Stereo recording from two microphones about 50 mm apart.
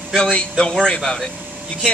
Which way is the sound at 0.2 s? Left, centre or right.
Centre.